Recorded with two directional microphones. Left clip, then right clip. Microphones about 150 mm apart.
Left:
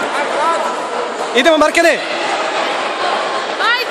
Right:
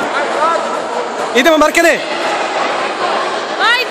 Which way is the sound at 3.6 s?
30° right (ahead or behind).